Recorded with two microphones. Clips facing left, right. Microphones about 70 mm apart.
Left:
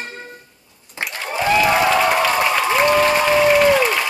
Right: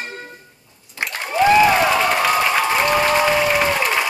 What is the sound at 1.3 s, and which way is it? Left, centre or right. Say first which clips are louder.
Applause: right 3 dB; centre.